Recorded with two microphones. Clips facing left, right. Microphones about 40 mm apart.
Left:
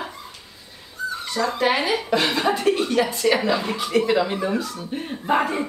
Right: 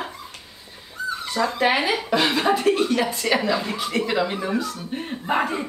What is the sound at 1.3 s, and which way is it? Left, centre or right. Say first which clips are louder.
Speech: even; centre.